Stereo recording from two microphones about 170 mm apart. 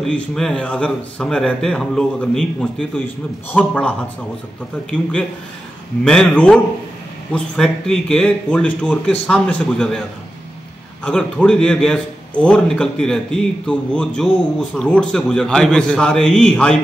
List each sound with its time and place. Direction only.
0.0 s a man's voice: centre (ahead or behind)
6.0 s a man's voice: 5° left (ahead or behind)
11.1 s a man's voice: 5° left (ahead or behind)